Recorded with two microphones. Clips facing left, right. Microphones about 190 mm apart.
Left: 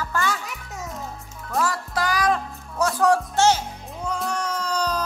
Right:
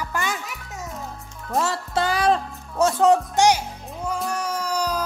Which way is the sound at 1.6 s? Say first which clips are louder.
Right 1 dB; 25° right (ahead or behind).